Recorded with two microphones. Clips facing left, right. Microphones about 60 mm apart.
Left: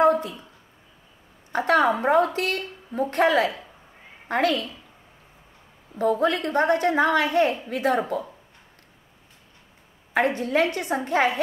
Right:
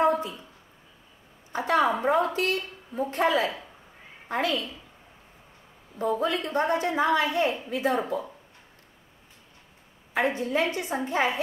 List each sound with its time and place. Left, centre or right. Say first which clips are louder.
1.5 s a sound: left 4 dB; left
2.0 s a woman's voice: left 3 dB; left
5.9 s a woman's voice: left 4 dB; left
10.1 s a woman's voice: left 4 dB; left